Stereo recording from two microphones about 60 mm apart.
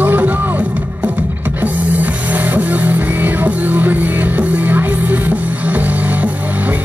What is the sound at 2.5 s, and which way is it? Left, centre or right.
Music, right.